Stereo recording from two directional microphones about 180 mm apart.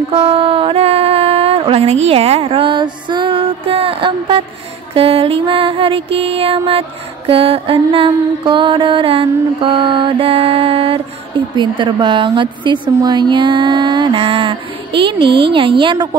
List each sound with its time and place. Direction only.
0.1 s speech: 30° right (ahead or behind)
2.4 s music: 30° right (ahead or behind)
8.5 s mantra: 30° right (ahead or behind)